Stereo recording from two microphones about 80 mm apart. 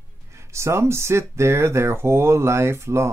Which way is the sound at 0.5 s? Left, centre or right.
Right.